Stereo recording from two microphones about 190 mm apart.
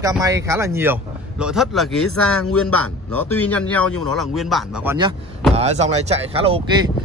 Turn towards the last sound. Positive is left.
turn(degrees=-30)  # may be behind; listen again after turning